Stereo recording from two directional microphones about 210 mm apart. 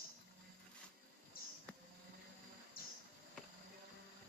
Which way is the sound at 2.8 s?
45° left (ahead or behind).